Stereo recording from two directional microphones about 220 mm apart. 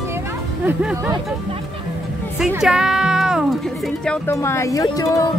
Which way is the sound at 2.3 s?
Centre (ahead or behind).